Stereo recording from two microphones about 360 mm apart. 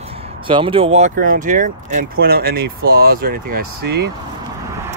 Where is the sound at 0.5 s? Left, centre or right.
Centre.